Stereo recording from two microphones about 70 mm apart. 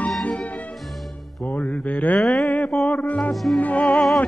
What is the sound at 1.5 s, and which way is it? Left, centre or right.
Mantra, left.